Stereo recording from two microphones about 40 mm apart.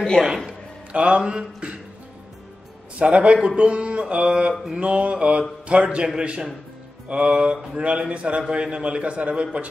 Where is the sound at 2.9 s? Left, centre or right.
Right.